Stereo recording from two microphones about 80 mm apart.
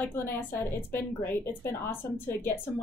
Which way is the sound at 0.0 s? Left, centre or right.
Left.